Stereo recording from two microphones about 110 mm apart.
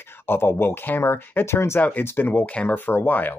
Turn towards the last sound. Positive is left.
turn(degrees=15)  # may be behind; listen again after turning